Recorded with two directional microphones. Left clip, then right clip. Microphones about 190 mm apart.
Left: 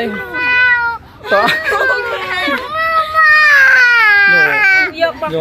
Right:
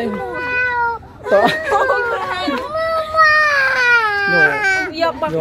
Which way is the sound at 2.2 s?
55° right (ahead or behind).